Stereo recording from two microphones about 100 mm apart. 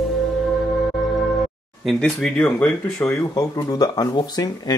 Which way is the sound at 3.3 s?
40° left (ahead or behind).